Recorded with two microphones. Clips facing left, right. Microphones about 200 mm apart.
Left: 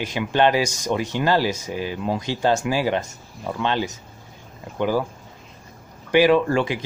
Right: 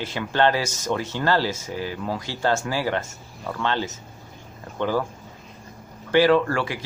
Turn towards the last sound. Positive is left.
turn(degrees=20)  # may be behind; listen again after turning